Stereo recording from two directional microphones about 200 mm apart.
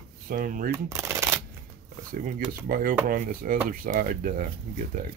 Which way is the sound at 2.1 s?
45° right (ahead or behind).